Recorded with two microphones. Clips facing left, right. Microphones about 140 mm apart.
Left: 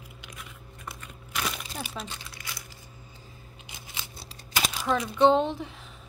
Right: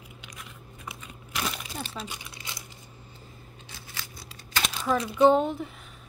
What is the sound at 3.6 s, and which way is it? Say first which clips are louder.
Scissors: left 1 dB; 15° left (ahead or behind).